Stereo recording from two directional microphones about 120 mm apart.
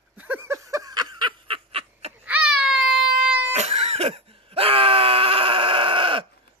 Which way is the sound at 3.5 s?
65° right (ahead or behind).